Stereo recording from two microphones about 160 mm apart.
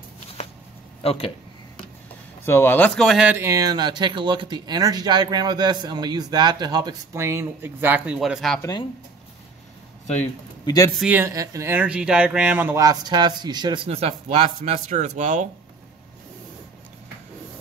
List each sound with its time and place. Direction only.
1.0 s speech: 35° left (ahead or behind)
2.4 s speech: 15° left (ahead or behind)
8.5 s speech: 25° left (ahead or behind)
10.6 s speech: 25° left (ahead or behind)
11.0 s speech: 10° right (ahead or behind)
13.8 s speech: 40° right (ahead or behind)